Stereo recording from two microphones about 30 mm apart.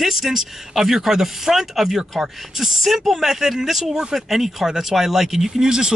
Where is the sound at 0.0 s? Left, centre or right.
Centre.